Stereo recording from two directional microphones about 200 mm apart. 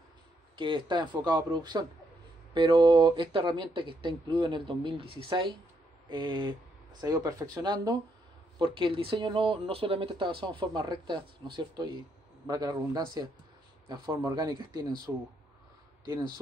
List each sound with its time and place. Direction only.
0.6 s speech: 25° right (ahead or behind)